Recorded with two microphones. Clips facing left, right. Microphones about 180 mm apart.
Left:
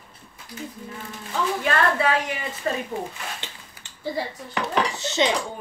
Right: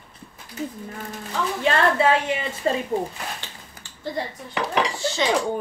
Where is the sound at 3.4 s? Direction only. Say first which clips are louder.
Left 1 dB; 20° left (ahead or behind).